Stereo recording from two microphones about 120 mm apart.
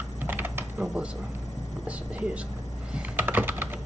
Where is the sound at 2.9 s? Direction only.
15° right (ahead or behind).